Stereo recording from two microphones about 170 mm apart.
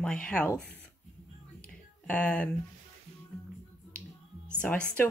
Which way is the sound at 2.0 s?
5° left (ahead or behind).